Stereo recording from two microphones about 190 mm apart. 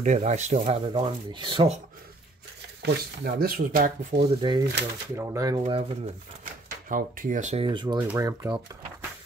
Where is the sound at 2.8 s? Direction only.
55° right (ahead or behind).